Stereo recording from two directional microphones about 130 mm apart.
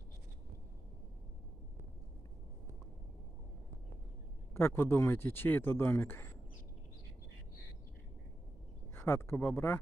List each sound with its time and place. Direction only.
4.6 s speech: 20° left (ahead or behind)
8.9 s speech: 20° left (ahead or behind)